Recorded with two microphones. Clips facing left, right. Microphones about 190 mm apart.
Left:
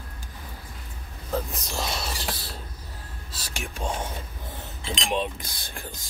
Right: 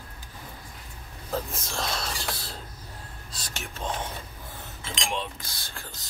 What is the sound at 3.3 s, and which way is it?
Cutlery, 10° left (ahead or behind).